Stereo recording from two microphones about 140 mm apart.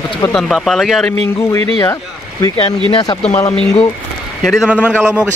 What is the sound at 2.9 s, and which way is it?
Speech, 30° left (ahead or behind).